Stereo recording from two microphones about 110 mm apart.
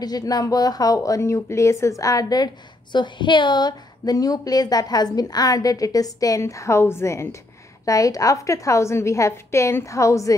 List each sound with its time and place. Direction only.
0.0 s a woman's voice: 35° left (ahead or behind)